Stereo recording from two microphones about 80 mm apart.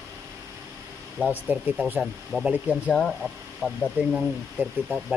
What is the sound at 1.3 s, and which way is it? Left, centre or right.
Speech, right.